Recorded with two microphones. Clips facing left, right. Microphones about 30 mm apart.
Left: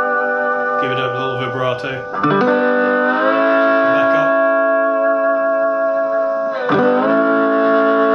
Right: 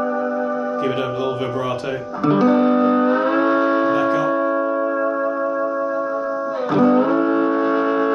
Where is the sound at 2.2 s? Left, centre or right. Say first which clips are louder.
Left 1 dB; left.